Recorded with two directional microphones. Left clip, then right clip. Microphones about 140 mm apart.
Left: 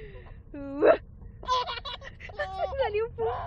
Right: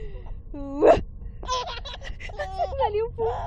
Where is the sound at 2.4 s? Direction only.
5° right (ahead or behind).